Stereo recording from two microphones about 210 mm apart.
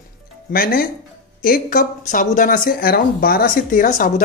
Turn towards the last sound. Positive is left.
turn(degrees=40)  # may be behind; listen again after turning